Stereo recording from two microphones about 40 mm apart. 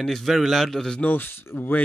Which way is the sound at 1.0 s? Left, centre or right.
Left.